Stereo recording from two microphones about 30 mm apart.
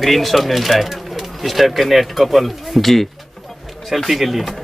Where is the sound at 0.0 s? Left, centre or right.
Centre.